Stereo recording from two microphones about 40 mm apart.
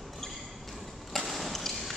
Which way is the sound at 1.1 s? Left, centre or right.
Centre.